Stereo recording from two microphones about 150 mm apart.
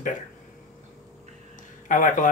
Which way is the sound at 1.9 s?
60° left (ahead or behind).